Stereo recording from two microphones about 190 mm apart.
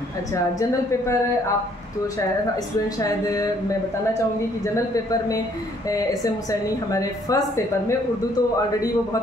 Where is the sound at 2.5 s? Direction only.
20° left (ahead or behind).